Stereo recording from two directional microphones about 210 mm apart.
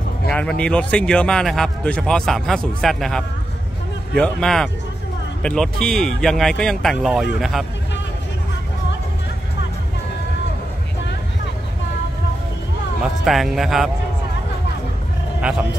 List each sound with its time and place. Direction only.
0.3 s speech: 5° left (ahead or behind)
13.2 s speech: centre (ahead or behind)